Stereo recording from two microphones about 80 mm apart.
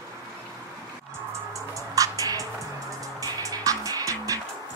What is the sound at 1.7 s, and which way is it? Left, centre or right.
Music, right.